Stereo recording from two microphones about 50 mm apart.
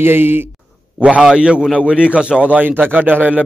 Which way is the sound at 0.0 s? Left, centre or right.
Right.